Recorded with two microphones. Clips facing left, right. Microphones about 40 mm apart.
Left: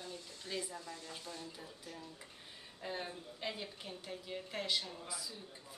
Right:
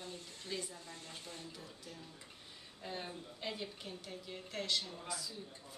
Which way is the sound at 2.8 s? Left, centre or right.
Centre.